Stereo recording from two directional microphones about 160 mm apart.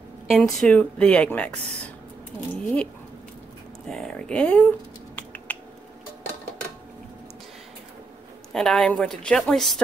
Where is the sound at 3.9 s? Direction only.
5° left (ahead or behind).